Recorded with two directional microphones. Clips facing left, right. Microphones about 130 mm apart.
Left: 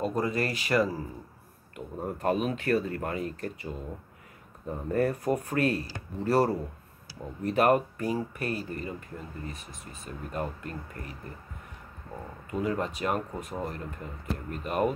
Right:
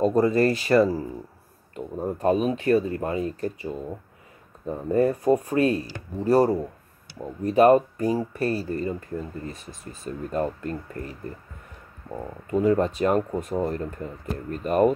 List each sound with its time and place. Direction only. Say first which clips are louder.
0.0 s speech: right 9 dB; 35° right (ahead or behind)
12.4 s speech: right 9 dB; 35° right (ahead or behind)